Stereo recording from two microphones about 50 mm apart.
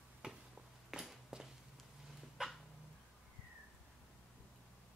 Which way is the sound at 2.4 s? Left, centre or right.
Centre.